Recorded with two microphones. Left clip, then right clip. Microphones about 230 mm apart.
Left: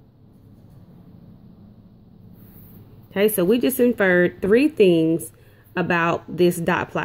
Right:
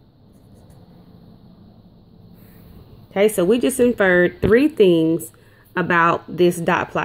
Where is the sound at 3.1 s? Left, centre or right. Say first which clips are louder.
Right 2 dB; centre.